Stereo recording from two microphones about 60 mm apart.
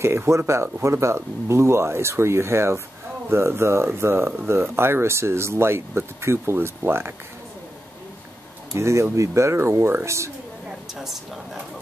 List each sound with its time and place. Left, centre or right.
0.0 s speech: right
8.7 s speech: right
11.0 s speech: centre